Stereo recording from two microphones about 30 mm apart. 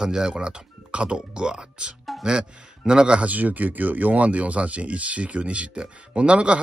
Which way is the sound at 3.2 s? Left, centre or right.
Right.